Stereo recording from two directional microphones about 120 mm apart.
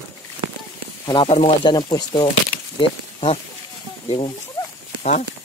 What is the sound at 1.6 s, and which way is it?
Speech, 40° left (ahead or behind).